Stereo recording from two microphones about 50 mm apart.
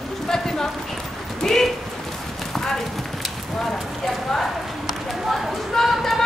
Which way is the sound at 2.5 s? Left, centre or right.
Centre.